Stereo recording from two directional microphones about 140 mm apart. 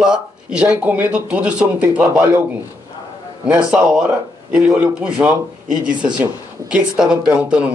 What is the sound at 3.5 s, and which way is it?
A man's voice, 10° right (ahead or behind).